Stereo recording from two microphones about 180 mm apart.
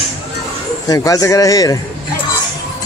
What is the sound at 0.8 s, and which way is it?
Speech, 20° left (ahead or behind).